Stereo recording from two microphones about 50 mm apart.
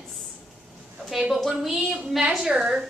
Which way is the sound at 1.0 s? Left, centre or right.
Centre.